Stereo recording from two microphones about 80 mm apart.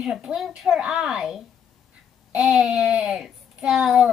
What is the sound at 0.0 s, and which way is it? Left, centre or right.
A child's voice, centre.